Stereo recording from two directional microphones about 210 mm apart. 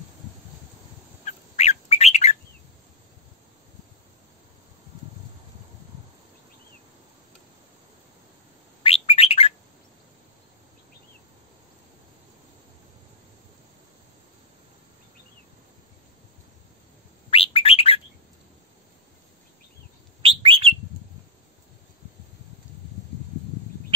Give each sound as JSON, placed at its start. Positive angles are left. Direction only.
{"t": 1.2, "sound": "bird", "side_deg": 30}
{"t": 8.8, "sound": "bird", "side_deg": 25}
{"t": 17.3, "sound": "bird", "side_deg": 25}
{"t": 20.2, "sound": "bird", "side_deg": -25}